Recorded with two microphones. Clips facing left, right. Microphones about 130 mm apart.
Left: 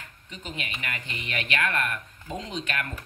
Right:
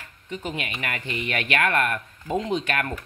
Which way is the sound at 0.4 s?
50° right (ahead or behind).